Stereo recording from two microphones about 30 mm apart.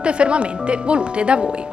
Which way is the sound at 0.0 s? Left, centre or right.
Right.